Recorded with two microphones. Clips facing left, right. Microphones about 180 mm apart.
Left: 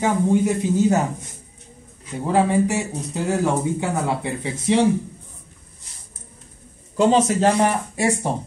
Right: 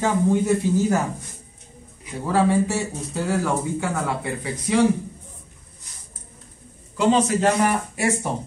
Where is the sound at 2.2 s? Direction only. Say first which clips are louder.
Left 1 dB; 15° left (ahead or behind).